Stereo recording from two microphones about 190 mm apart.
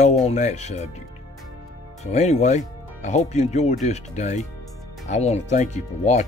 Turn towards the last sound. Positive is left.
turn(degrees=40)  # may be behind; listen again after turning